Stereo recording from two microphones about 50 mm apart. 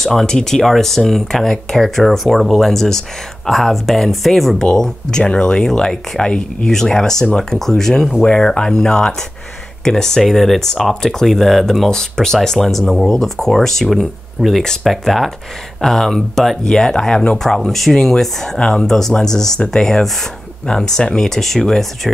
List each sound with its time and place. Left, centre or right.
0.0 s speech: centre